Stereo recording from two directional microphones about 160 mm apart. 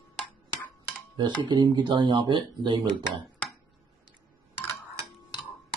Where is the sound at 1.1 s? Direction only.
30° right (ahead or behind).